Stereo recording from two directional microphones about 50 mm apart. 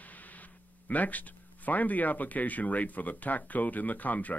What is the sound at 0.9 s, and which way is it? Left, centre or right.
A man's voice, left.